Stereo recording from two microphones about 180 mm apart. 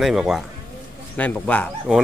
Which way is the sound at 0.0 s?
Centre (ahead or behind).